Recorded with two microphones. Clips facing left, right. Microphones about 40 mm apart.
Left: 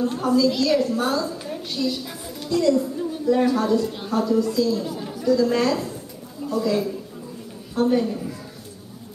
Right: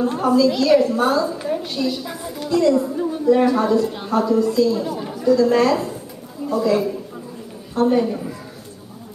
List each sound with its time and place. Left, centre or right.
0.0 s a woman's voice: centre